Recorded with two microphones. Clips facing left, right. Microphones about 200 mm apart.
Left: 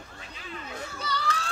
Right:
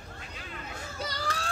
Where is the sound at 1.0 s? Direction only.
45° right (ahead or behind).